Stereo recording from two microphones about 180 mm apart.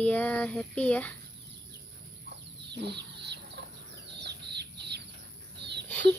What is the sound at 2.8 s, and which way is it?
Chicken, 70° right (ahead or behind).